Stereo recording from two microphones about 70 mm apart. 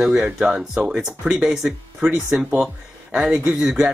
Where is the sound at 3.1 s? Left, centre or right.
Centre.